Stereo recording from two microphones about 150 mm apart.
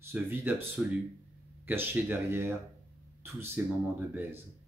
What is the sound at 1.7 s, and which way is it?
Speech, 15° right (ahead or behind).